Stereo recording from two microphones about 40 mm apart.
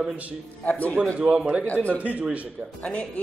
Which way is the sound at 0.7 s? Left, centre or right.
Left.